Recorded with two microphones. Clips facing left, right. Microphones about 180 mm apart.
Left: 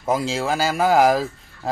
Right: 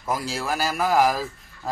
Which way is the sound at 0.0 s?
25° left (ahead or behind).